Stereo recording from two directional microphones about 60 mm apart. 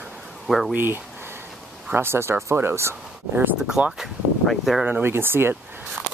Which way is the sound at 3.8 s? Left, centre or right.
Right.